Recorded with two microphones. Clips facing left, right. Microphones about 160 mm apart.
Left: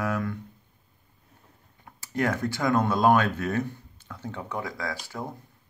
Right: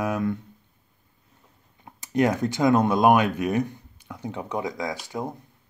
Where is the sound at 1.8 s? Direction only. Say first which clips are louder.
Right 5 dB; 20° right (ahead or behind).